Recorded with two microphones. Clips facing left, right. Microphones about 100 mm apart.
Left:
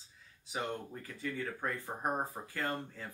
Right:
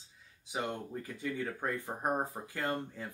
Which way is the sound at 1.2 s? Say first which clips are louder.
Right 1 dB; 20° right (ahead or behind).